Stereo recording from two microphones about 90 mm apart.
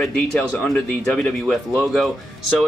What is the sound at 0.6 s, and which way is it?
Speech, 10° left (ahead or behind).